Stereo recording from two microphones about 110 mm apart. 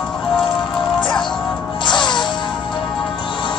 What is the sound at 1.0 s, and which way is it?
Music, 45° left (ahead or behind).